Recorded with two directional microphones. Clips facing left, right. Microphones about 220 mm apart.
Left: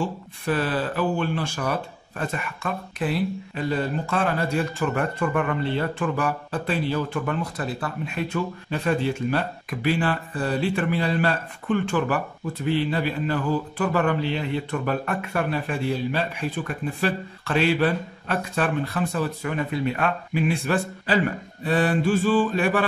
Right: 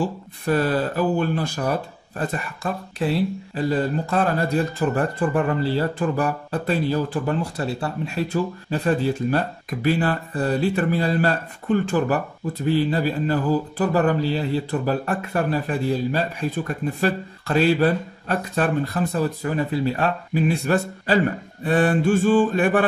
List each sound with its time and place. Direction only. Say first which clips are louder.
0.0 s speech: right 3 dB; 40° right (ahead or behind)
21.6 s mantra: right 3 dB; 45° right (ahead or behind)